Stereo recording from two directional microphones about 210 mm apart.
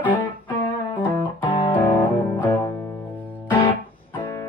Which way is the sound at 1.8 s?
10° left (ahead or behind).